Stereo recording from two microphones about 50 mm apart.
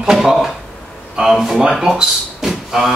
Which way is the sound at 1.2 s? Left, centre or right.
Centre.